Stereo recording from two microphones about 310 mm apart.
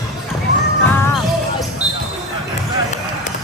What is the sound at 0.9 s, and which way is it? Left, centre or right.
Jingle bell, centre.